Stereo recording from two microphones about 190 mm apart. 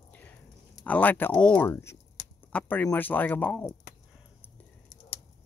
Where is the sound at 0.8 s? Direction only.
10° left (ahead or behind).